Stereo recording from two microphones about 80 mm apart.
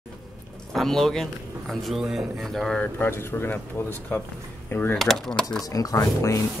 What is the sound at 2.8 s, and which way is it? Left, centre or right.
Speech, left.